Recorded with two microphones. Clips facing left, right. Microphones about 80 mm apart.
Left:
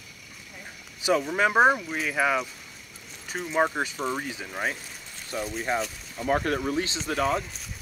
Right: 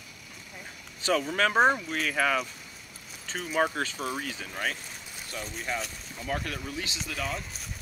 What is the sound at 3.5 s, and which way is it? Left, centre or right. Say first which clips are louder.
Speech: left 3 dB; centre.